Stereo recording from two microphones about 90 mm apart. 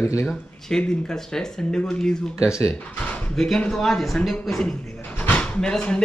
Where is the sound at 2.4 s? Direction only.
30° left (ahead or behind).